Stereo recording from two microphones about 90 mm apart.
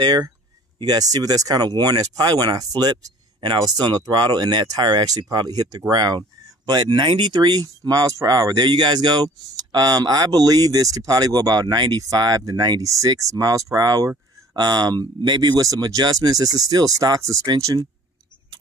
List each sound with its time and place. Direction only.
0.0 s speech: 45° right (ahead or behind)